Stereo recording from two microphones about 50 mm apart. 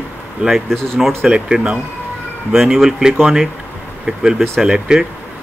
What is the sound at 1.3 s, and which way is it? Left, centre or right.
Speech, centre.